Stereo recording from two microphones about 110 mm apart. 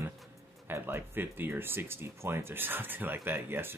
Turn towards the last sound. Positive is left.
turn(degrees=-20)  # may be behind; listen again after turning